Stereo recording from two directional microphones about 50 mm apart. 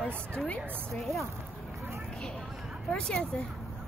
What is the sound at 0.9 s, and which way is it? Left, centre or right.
Speech, centre.